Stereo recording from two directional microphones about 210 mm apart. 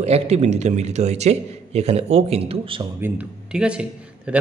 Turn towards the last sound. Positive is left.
turn(degrees=-5)  # may be behind; listen again after turning